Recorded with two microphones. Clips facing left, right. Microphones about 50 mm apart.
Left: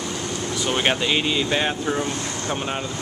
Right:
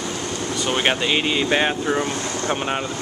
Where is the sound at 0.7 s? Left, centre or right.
Centre.